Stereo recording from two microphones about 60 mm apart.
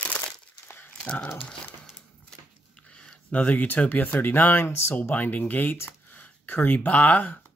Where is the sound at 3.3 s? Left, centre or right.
Left.